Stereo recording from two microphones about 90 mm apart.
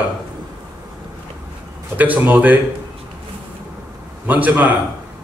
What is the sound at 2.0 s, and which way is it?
Speech, 20° right (ahead or behind).